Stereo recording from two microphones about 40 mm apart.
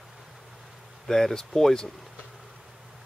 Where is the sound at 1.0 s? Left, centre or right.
Centre.